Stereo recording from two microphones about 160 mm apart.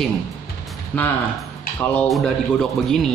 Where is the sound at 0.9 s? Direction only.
10° left (ahead or behind).